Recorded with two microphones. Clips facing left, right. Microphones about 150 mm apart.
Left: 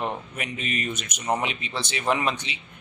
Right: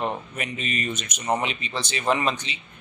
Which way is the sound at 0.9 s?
55° left (ahead or behind).